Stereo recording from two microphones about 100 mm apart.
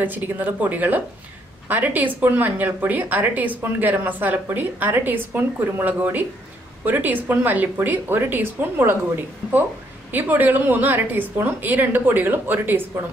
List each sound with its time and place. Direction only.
0.0 s speech: 20° right (ahead or behind)